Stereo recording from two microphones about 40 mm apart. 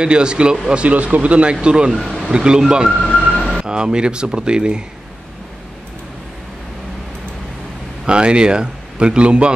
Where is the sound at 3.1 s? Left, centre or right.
Centre.